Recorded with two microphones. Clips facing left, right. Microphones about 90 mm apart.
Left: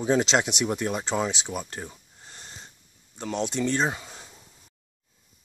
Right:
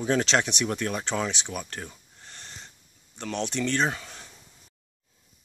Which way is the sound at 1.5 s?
15° left (ahead or behind).